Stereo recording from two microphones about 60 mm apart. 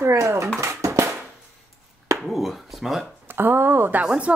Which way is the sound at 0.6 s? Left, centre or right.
Right.